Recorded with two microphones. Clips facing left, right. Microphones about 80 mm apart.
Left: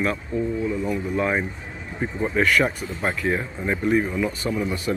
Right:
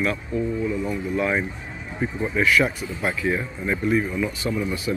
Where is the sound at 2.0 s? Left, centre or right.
Left.